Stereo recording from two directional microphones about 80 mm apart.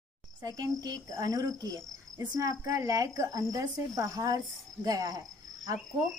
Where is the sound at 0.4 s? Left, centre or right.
Right.